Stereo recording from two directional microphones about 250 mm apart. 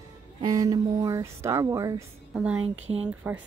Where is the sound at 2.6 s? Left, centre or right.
Right.